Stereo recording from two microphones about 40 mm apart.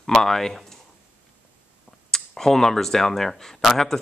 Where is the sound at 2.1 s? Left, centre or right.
Centre.